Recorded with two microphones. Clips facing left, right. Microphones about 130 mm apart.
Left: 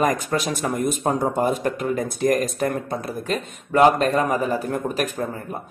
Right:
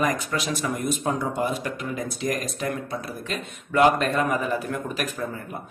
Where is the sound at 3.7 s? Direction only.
35° left (ahead or behind).